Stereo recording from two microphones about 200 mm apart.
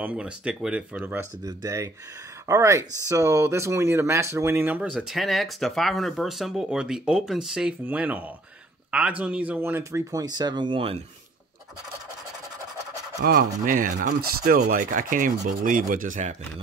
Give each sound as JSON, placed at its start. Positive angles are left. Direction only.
{"t": 0.0, "sound": "speech", "side_deg": -5}
{"t": 9.2, "sound": "speech", "side_deg": -5}
{"t": 13.2, "sound": "speech", "side_deg": -45}